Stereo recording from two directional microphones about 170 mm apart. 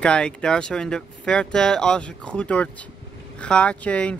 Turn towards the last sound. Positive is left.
turn(degrees=5)  # may be behind; listen again after turning